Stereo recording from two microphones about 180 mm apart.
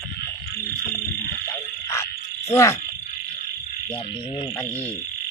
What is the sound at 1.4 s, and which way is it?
Frog, 15° left (ahead or behind).